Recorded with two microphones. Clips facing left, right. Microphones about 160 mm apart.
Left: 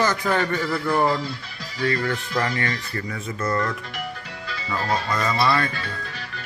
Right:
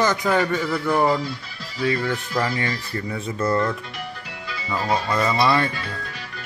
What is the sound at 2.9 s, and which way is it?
Speech, 25° right (ahead or behind).